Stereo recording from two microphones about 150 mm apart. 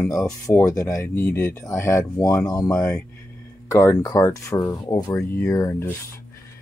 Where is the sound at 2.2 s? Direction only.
5° left (ahead or behind).